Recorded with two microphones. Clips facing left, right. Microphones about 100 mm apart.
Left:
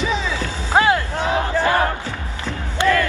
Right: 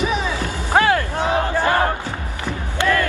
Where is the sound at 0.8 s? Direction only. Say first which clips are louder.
Even; 20° left (ahead or behind).